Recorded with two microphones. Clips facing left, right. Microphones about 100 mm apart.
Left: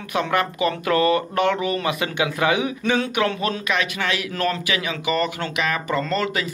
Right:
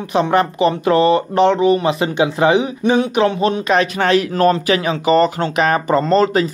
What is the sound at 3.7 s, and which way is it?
Speech, 40° right (ahead or behind).